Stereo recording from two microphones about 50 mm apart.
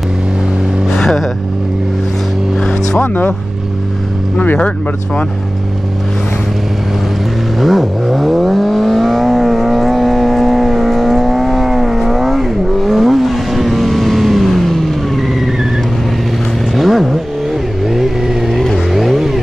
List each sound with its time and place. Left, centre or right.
3.0 s speech: left
7.6 s vehicle: centre
16.7 s vehicle: centre